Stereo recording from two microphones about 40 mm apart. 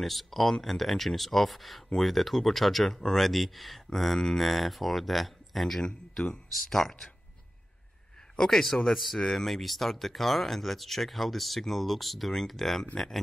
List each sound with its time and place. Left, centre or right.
0.0 s speech: centre
5.8 s speech: centre
8.4 s speech: centre
8.9 s speech: centre
9.2 s speech: centre
9.5 s speech: centre